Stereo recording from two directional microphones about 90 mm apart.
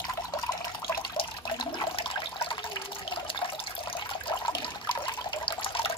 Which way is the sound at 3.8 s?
70° left (ahead or behind).